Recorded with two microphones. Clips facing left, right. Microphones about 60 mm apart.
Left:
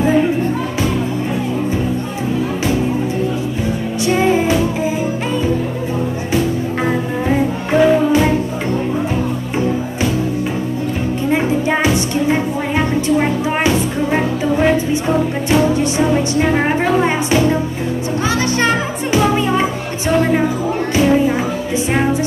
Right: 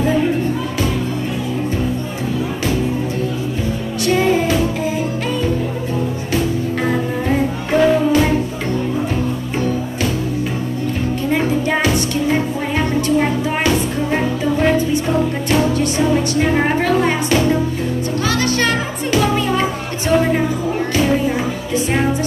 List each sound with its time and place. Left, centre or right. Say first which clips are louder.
4.0 s music: left 1 dB; centre
6.9 s music: left 1 dB; centre
11.2 s music: left 2 dB; centre
15.6 s music: left 2 dB; centre
19.1 s music: left 2 dB; centre